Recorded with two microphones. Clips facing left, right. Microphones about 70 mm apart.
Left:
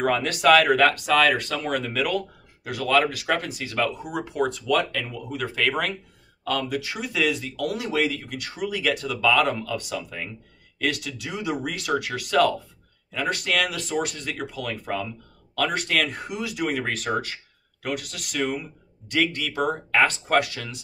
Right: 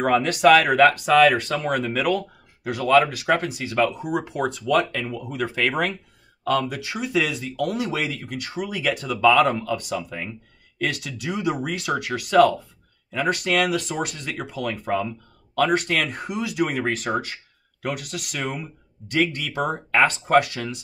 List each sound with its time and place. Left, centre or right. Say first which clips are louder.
0.0 s speech: right 3 dB; centre
4.6 s speech: right 2 dB; right